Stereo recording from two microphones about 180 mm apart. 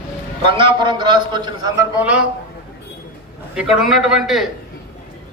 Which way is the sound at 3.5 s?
5° right (ahead or behind).